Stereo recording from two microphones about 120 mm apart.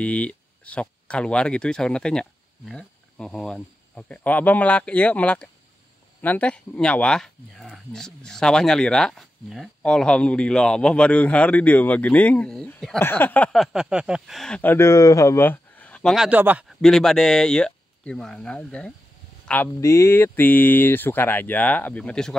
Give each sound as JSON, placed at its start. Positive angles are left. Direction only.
{"t": 0.0, "sound": "speech", "side_deg": 10}
{"t": 13.5, "sound": "speech", "side_deg": 0}
{"t": 14.6, "sound": "speech", "side_deg": 20}
{"t": 16.2, "sound": "speech", "side_deg": -15}
{"t": 16.6, "sound": "speech", "side_deg": 5}
{"t": 19.4, "sound": "a sound", "side_deg": 10}
{"t": 19.8, "sound": "speech", "side_deg": 25}